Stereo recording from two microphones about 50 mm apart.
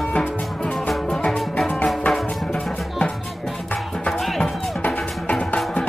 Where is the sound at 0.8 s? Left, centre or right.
Centre.